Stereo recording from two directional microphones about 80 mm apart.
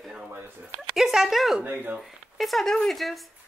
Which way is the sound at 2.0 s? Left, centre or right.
Centre.